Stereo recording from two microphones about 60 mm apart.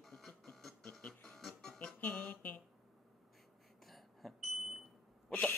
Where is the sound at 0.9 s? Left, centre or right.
Centre.